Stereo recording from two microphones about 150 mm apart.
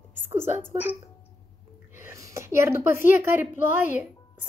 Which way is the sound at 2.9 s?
15° right (ahead or behind).